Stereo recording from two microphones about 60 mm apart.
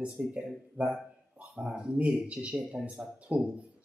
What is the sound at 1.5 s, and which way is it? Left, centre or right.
Speech, centre.